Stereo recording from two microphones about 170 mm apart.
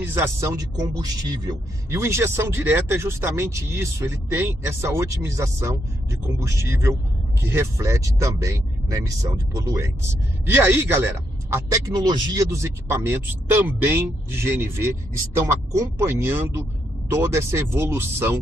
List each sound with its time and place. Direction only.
0.0 s speech: 15° right (ahead or behind)